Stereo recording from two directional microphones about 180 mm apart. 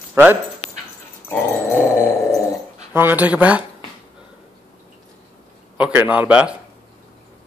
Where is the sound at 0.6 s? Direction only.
35° left (ahead or behind).